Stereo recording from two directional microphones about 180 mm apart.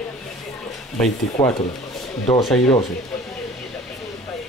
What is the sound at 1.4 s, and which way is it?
Speech, 25° left (ahead or behind).